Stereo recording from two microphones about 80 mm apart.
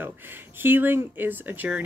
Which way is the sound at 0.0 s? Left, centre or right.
Right.